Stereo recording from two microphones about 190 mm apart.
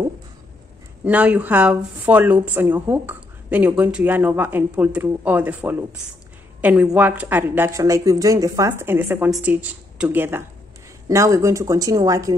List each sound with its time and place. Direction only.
1.0 s a woman's voice: 5° right (ahead or behind)